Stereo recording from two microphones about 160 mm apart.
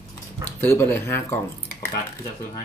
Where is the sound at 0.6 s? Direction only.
15° left (ahead or behind).